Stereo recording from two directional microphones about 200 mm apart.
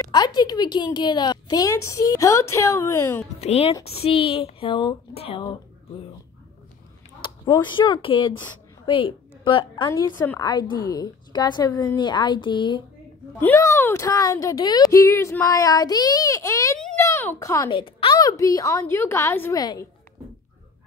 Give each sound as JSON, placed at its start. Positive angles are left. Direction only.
{"t": 0.0, "sound": "speech", "side_deg": 20}
{"t": 3.3, "sound": "speech", "side_deg": 30}
{"t": 7.2, "sound": "speech", "side_deg": 20}
{"t": 13.4, "sound": "speech", "side_deg": 10}
{"t": 16.8, "sound": "a sound", "side_deg": 15}
{"t": 17.6, "sound": "speech", "side_deg": 25}